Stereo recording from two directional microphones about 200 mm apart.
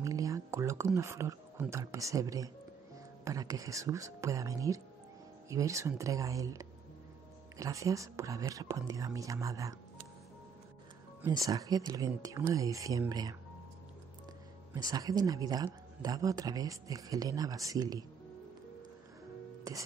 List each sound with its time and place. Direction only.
0.0 s speech: 15° right (ahead or behind)
11.2 s speech: 15° right (ahead or behind)
14.7 s speech: 20° right (ahead or behind)
19.7 s music: 15° right (ahead or behind)